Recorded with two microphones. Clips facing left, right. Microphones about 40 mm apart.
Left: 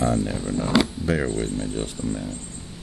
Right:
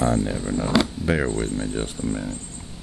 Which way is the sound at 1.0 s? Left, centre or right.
Centre.